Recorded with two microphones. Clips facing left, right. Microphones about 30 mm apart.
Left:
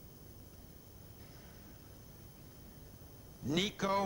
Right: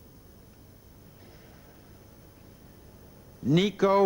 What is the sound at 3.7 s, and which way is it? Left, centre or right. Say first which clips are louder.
Speech: right 11 dB; right.